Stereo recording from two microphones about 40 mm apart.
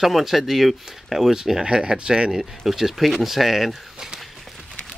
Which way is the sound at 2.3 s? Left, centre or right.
Centre.